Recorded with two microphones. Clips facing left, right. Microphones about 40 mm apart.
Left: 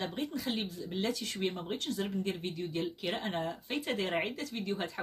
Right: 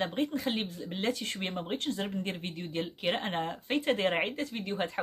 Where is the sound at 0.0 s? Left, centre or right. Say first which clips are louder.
Right 5 dB; right.